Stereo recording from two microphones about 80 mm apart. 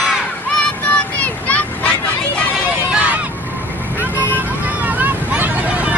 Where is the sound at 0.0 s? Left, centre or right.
Centre.